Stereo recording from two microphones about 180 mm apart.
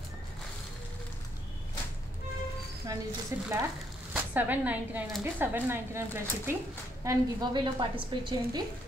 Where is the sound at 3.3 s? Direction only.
15° right (ahead or behind).